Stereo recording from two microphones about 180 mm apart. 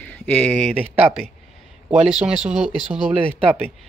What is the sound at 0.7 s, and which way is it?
Speech, 10° right (ahead or behind).